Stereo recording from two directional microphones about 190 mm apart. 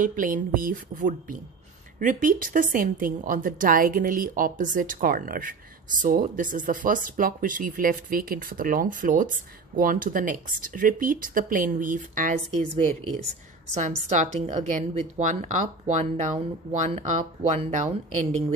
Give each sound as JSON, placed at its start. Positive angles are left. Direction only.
{"t": 0.0, "sound": "a woman's voice", "side_deg": -45}
{"t": 13.7, "sound": "a woman's voice", "side_deg": -40}